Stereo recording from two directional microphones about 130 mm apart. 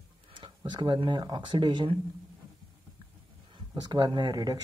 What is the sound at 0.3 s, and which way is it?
Speech, 40° right (ahead or behind).